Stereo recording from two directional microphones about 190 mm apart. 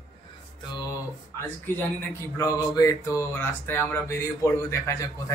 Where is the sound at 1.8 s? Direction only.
15° left (ahead or behind).